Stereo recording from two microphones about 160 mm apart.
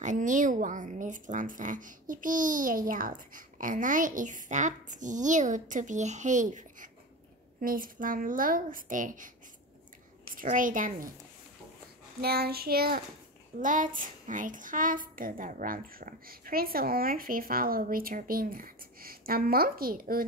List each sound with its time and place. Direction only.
0.0 s a woman's voice: 50° right (ahead or behind)
10.3 s a woman's voice: 55° right (ahead or behind)
12.2 s child singing: 75° right (ahead or behind)
13.6 s a woman's voice: 55° right (ahead or behind)